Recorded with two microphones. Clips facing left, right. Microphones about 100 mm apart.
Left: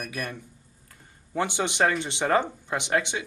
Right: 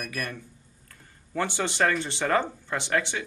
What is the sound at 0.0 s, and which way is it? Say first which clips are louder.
Speech: even; 20° left (ahead or behind).